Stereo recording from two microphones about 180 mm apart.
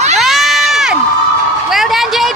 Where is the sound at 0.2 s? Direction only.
Centre (ahead or behind).